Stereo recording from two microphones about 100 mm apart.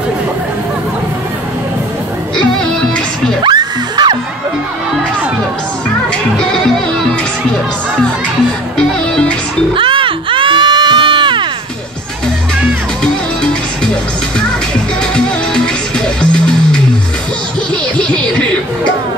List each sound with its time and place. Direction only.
3.4 s music: 50° right (ahead or behind)
6.3 s music: 5° left (ahead or behind)
8.7 s music: 5° left (ahead or behind)
9.8 s a sound: 60° right (ahead or behind)
13.0 s music: 10° left (ahead or behind)
15.1 s music: 10° left (ahead or behind)
17.9 s music: 10° left (ahead or behind)